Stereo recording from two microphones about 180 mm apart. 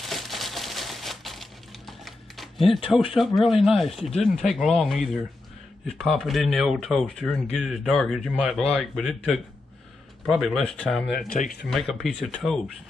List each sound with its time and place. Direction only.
0.0 s a sound: centre (ahead or behind)
3.2 s speech: centre (ahead or behind)
11.1 s speech: 55° left (ahead or behind)
11.7 s speech: centre (ahead or behind)